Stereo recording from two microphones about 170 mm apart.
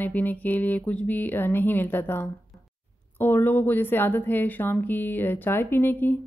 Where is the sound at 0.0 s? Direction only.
10° left (ahead or behind).